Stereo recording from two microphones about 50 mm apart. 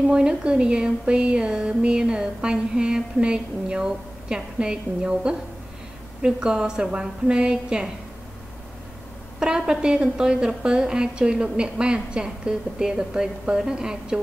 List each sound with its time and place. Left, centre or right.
0.0 s speech: centre
9.4 s speech: centre